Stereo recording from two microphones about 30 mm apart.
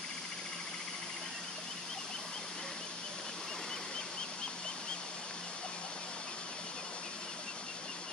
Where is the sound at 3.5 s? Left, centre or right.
Left.